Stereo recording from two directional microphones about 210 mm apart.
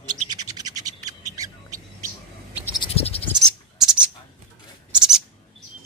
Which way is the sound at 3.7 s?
5° right (ahead or behind).